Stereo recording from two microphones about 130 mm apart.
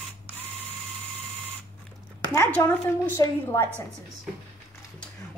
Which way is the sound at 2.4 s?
20° left (ahead or behind).